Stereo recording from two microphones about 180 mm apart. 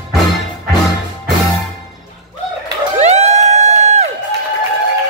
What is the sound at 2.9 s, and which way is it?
Crowd, 40° right (ahead or behind).